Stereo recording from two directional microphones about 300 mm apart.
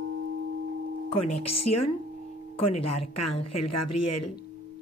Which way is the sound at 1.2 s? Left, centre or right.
Left.